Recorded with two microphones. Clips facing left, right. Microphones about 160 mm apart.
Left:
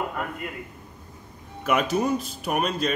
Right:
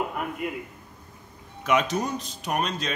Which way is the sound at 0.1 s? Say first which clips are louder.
Right 1 dB; 15° right (ahead or behind).